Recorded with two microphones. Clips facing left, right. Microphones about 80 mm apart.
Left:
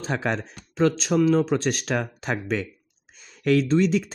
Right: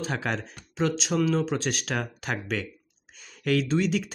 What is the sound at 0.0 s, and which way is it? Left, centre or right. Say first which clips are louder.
Speech: left 3 dB; left.